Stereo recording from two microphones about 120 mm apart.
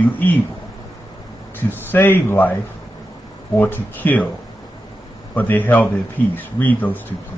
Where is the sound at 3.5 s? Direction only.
15° left (ahead or behind).